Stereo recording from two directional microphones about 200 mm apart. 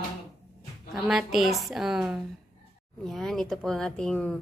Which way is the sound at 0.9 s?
Centre (ahead or behind).